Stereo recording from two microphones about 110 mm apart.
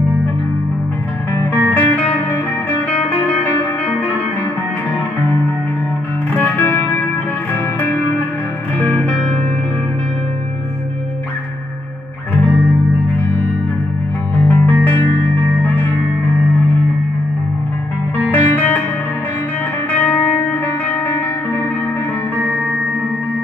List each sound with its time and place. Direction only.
1.5 s music: 15° left (ahead or behind)
6.3 s music: 20° left (ahead or behind)
12.4 s music: 10° left (ahead or behind)
18.3 s music: 15° left (ahead or behind)
19.9 s music: 15° left (ahead or behind)